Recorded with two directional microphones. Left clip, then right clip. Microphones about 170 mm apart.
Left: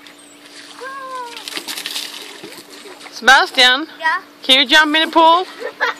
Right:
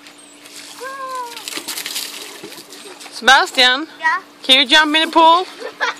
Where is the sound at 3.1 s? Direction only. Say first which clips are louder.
Left 1 dB; centre (ahead or behind).